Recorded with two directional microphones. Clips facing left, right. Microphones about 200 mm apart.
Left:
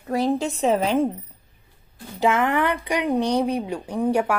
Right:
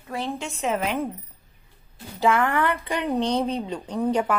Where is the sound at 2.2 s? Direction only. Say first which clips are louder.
Left 1 dB; 15° left (ahead or behind).